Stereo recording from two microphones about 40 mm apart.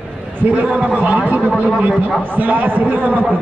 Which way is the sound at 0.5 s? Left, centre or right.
Right.